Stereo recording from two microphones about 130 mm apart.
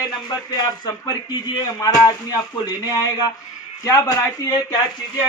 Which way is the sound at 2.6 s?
30° left (ahead or behind).